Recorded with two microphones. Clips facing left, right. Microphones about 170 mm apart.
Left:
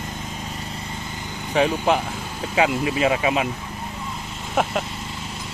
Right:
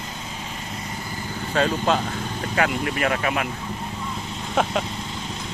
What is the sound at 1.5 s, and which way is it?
Speech, 15° left (ahead or behind).